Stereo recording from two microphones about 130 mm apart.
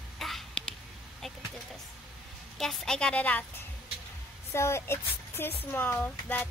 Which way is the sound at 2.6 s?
Centre (ahead or behind).